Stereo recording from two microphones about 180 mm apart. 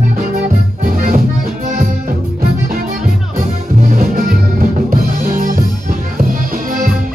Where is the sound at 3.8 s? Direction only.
50° right (ahead or behind).